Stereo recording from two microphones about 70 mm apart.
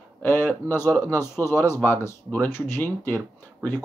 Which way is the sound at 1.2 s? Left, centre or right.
Left.